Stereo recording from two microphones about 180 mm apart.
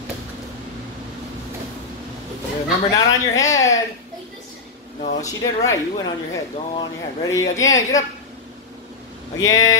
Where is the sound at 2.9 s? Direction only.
20° left (ahead or behind).